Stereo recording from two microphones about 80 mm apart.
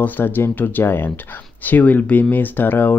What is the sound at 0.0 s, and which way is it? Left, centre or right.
Speech, left.